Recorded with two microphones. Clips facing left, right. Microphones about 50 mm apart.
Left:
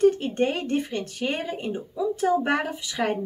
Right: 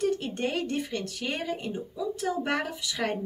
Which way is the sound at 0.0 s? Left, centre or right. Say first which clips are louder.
Left 8 dB; left.